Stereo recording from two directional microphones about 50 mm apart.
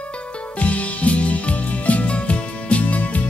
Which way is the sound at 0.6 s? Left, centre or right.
Left.